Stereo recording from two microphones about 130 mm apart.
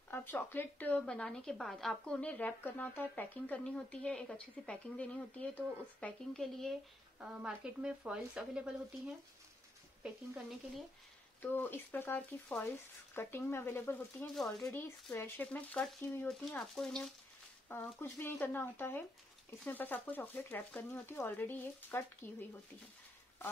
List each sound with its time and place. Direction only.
0.1 s a woman's voice: 15° left (ahead or behind); by 9.1 s 5° right (ahead or behind)
11.4 s a woman's voice: 15° left (ahead or behind)
14.3 s speech: centre (ahead or behind)
14.7 s a woman's voice: 15° left (ahead or behind)
17.6 s a woman's voice: 15° left (ahead or behind)